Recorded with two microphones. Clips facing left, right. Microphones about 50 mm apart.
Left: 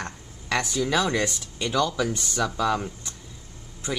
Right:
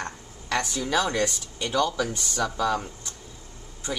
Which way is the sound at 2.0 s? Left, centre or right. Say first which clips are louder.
Left 1 dB; centre.